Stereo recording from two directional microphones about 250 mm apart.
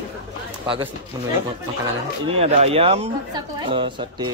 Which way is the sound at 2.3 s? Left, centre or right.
Right.